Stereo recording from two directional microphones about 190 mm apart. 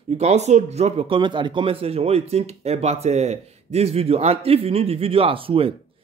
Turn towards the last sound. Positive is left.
turn(degrees=-30)  # may be behind; listen again after turning